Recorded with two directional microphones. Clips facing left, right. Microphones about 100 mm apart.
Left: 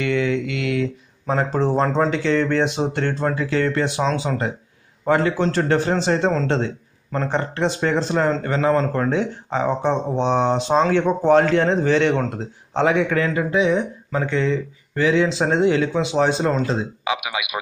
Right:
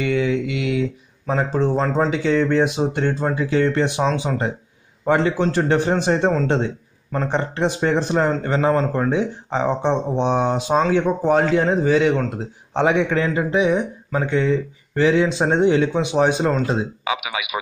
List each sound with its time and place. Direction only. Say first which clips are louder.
0.0 s mantra: right 1 dB; 10° right (ahead or behind)
1.3 s speech: even; centre (ahead or behind)
12.7 s speech: even; 20° right (ahead or behind)